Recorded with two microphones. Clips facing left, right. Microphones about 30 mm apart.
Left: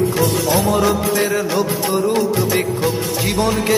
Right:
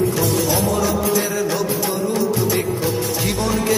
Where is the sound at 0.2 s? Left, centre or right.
Left.